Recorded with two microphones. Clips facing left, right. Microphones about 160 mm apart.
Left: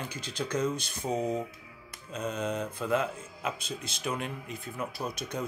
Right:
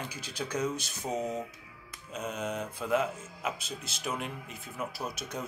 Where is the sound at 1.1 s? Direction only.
30° left (ahead or behind).